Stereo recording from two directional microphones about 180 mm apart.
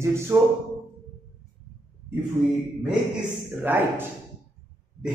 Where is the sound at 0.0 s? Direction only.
15° right (ahead or behind).